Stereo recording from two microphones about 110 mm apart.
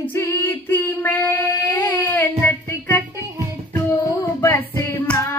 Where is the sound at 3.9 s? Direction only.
25° left (ahead or behind).